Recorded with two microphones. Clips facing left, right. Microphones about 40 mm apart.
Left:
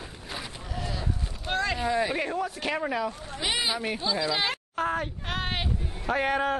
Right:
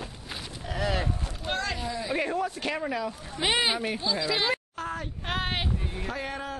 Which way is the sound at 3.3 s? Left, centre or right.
Right.